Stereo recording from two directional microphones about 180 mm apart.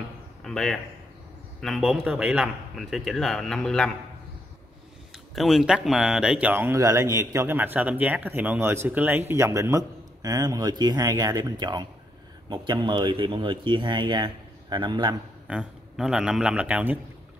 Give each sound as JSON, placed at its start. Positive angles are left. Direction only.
{"t": 0.4, "sound": "a man's voice", "side_deg": 0}
{"t": 5.1, "sound": "speech", "side_deg": 0}
{"t": 15.4, "sound": "a man's voice", "side_deg": -5}